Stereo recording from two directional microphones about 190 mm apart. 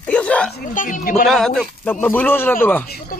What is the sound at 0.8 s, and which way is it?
Speech, 45° left (ahead or behind).